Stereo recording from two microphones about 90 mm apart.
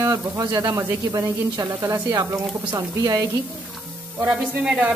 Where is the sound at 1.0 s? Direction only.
45° right (ahead or behind).